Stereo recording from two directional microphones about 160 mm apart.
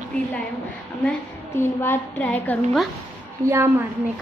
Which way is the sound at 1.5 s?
15° left (ahead or behind).